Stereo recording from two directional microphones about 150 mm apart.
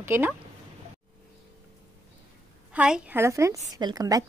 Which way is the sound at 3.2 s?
20° right (ahead or behind).